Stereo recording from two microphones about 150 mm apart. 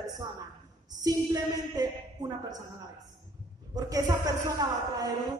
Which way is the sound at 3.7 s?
25° right (ahead or behind).